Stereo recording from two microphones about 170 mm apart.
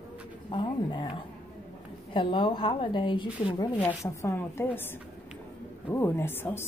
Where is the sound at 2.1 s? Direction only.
30° left (ahead or behind).